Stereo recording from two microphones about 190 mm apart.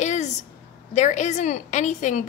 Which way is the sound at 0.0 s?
40° left (ahead or behind).